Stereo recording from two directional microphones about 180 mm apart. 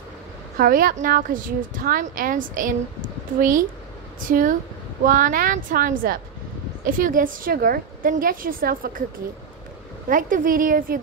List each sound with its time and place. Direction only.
0.6 s a woman's voice: 50° right (ahead or behind)
10.0 s a woman's voice: 50° right (ahead or behind)